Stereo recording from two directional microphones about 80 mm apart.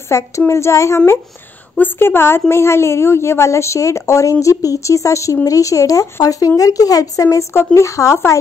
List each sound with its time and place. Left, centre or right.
0.1 s a woman's voice: left
1.8 s a woman's voice: left